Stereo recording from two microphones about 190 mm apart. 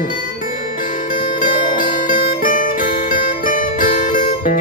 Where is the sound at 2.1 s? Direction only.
45° left (ahead or behind).